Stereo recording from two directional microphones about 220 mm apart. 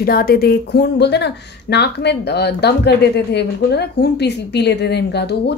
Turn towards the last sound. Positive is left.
turn(degrees=50)  # may be behind; listen again after turning